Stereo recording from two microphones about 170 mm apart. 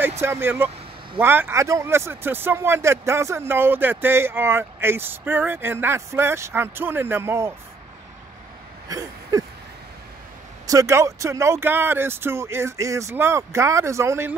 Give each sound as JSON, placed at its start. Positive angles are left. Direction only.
{"t": 0.2, "sound": "speech", "side_deg": -15}
{"t": 8.8, "sound": "a sound", "side_deg": -20}
{"t": 10.7, "sound": "speech", "side_deg": -20}